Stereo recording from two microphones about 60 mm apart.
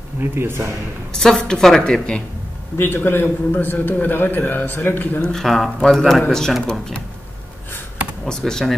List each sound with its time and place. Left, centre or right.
0.2 s a man's voice: right
1.1 s a woman's voice: centre
2.8 s a man's voice: left
5.3 s a woman's voice: centre
8.3 s a woman's voice: centre